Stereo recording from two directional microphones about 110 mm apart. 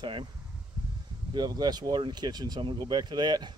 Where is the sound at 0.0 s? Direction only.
45° right (ahead or behind).